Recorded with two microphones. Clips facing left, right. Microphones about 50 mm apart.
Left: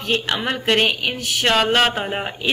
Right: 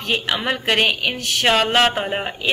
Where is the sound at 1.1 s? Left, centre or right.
Centre.